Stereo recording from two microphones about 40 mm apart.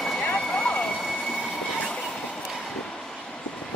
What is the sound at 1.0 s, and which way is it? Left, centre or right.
Train, centre.